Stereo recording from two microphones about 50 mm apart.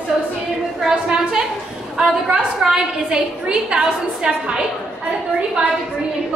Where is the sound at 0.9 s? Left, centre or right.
Centre.